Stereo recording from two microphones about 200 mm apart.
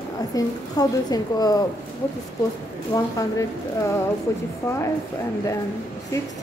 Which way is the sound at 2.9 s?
15° left (ahead or behind).